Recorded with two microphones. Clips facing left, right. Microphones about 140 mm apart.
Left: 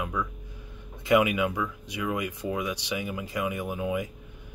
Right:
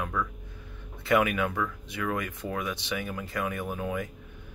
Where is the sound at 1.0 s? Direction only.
15° left (ahead or behind).